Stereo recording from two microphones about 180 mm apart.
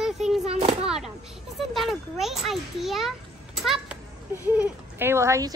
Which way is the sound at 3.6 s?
Centre (ahead or behind).